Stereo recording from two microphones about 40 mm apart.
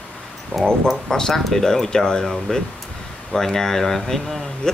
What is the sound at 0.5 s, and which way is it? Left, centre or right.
Speech, left.